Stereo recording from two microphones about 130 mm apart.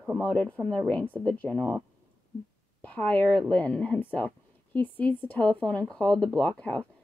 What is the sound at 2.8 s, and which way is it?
Speech, 10° left (ahead or behind).